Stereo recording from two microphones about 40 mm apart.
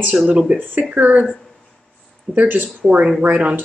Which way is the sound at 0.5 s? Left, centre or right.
Right.